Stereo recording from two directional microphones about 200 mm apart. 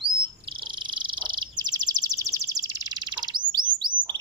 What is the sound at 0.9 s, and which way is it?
Bird, 25° right (ahead or behind).